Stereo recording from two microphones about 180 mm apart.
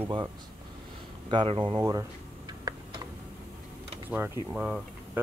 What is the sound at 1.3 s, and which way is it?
Speech, 30° right (ahead or behind).